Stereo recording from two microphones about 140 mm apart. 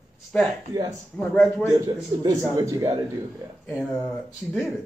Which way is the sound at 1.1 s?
5° left (ahead or behind).